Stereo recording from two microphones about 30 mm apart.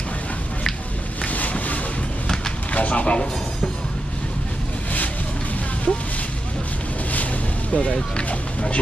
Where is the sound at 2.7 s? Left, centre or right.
Left.